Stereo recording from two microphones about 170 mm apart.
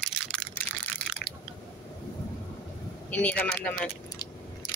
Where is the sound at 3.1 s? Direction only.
10° left (ahead or behind).